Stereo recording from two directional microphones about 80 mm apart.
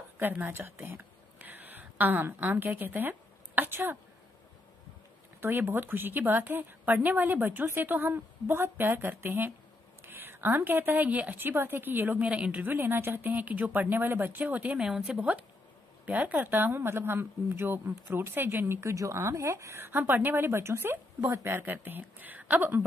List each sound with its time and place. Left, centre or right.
0.2 s a woman's voice: right
5.4 s speech: right
14.9 s speech: centre; by 22.8 s right